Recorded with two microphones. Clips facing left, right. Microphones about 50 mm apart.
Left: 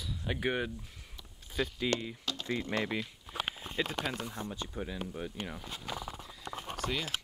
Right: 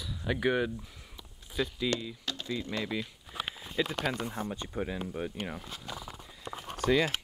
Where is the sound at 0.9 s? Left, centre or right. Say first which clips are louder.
Right 2 dB; centre.